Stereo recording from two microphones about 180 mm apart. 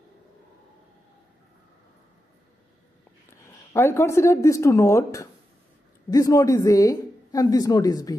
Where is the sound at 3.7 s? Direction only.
15° left (ahead or behind).